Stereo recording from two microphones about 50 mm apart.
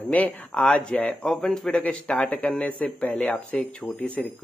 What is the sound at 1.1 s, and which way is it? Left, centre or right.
Speech, centre.